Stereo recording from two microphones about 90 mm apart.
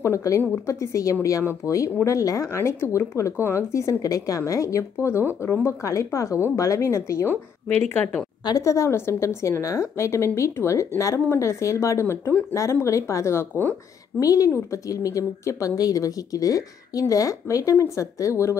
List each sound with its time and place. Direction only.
0.0 s a woman's voice: 35° left (ahead or behind)
7.6 s speech: 15° left (ahead or behind)
8.5 s a woman's voice: 40° left (ahead or behind)